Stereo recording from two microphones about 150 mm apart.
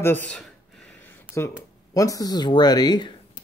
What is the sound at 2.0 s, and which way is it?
Speech, 25° left (ahead or behind).